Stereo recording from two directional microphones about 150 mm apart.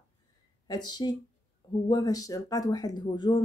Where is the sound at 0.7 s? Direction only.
25° left (ahead or behind).